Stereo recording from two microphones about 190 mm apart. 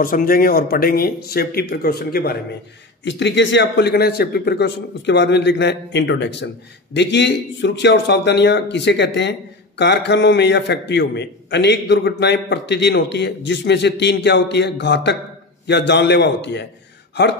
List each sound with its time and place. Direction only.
0.0 s speech: 50° left (ahead or behind)
3.1 s a man's voice: 70° left (ahead or behind)